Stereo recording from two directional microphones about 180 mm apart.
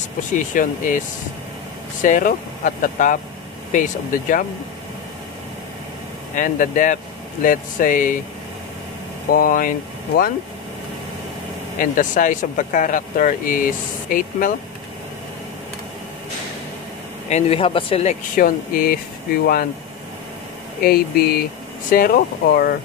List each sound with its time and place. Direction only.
0.3 s speech: 45° left (ahead or behind)
2.0 s speech: 45° left (ahead or behind)
6.3 s speech: 45° left (ahead or behind)
9.3 s speech: 50° left (ahead or behind)
11.8 s speech: 45° left (ahead or behind)
17.3 s speech: 35° left (ahead or behind)
18.3 s speech: 50° left (ahead or behind)
20.8 s speech: 55° left (ahead or behind)